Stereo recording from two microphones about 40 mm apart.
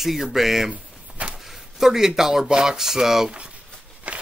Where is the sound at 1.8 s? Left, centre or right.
Centre.